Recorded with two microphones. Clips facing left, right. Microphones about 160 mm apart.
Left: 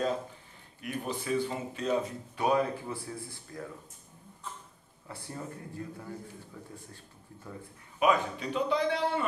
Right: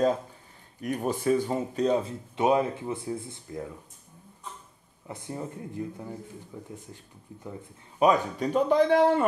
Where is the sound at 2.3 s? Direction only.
20° right (ahead or behind).